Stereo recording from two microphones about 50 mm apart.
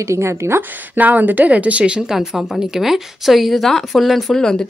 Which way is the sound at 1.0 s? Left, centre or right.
Right.